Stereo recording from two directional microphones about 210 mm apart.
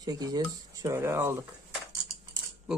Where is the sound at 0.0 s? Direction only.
20° right (ahead or behind).